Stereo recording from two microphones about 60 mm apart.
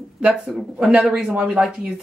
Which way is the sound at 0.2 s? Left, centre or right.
Centre.